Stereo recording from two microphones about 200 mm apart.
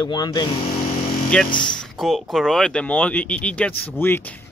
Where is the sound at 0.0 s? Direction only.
20° left (ahead or behind).